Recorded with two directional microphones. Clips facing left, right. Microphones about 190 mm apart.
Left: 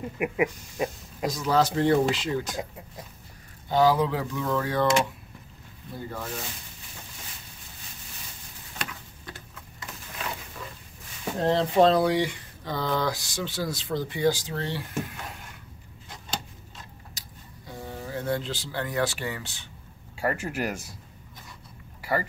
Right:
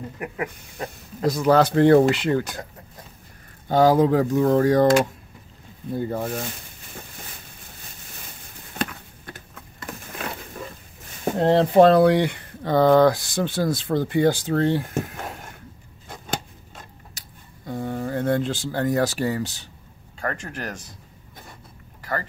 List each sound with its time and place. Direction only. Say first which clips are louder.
0.2 s speech: left 6 dB; 10° left (ahead or behind)
1.2 s speech: right 6 dB; 60° right (ahead or behind)
3.6 s speech: right 5 dB; 45° right (ahead or behind)
6.0 s speech: right 6 dB; 55° right (ahead or behind)
9.9 s a sound: right 9 dB; 55° right (ahead or behind)
11.2 s speech: right 6 dB; 60° right (ahead or behind)
16.1 s a sound: right 6 dB; 55° right (ahead or behind)
17.6 s speech: right 10 dB; 55° right (ahead or behind); by 19.7 s 40° right (ahead or behind)
20.2 s speech: left 2 dB; 10° left (ahead or behind)
22.0 s a sound: left 1 dB; 10° left (ahead or behind)